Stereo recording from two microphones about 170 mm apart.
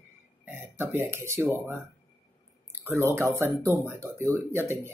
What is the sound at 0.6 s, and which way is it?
Speech, 15° right (ahead or behind).